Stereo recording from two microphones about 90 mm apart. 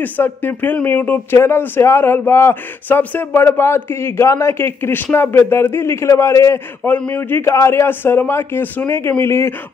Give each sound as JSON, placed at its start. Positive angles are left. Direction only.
{"t": 0.0, "sound": "a man's voice", "side_deg": 20}
{"t": 6.9, "sound": "a man's voice", "side_deg": 20}